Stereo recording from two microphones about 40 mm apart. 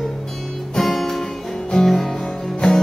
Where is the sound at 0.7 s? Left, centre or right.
Centre.